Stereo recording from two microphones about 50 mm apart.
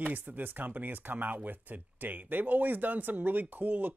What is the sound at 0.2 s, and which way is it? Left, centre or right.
Speech, right.